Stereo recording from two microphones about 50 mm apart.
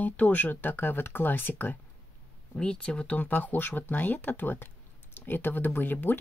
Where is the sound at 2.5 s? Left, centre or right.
Centre.